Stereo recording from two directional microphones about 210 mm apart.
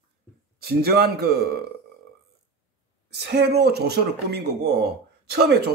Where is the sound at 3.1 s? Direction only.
55° right (ahead or behind).